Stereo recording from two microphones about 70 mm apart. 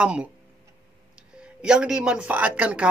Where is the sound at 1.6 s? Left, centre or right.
Centre.